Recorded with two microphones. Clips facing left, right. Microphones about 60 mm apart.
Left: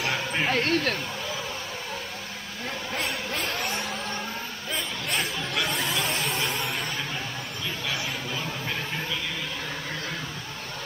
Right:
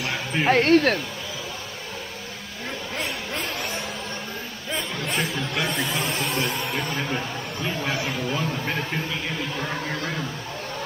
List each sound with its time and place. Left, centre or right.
0.0 s bow-wow: centre
0.5 s speech: right
3.0 s a sound: centre
4.7 s chatter: centre
7.0 s a sound: right
8.3 s speech: centre